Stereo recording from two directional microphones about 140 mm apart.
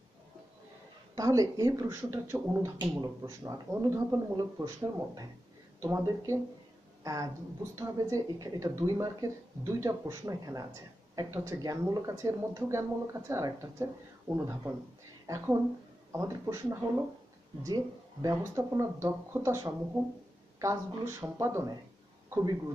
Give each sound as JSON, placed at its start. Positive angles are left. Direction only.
{"t": 1.1, "sound": "speech", "side_deg": -25}
{"t": 7.0, "sound": "a sound", "side_deg": -25}
{"t": 7.7, "sound": "a man's voice", "side_deg": -25}